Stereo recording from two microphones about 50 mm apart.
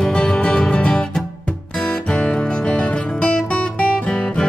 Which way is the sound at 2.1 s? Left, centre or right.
Centre.